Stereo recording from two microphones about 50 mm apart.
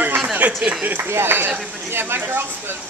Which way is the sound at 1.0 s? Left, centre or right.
Right.